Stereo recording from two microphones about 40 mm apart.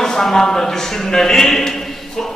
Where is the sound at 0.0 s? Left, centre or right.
Centre.